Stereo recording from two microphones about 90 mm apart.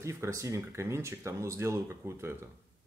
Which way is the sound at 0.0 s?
35° right (ahead or behind).